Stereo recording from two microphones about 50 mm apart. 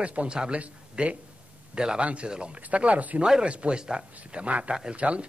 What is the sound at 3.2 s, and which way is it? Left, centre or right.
A man's voice, centre.